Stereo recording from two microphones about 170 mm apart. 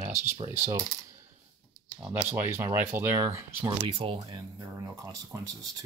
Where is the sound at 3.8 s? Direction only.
35° right (ahead or behind).